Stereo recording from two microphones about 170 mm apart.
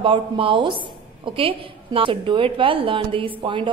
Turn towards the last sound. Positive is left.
turn(degrees=-30)  # may be behind; listen again after turning